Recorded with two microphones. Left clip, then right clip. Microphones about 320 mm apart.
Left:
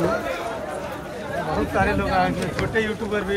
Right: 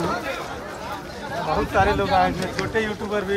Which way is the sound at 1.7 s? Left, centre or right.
Right.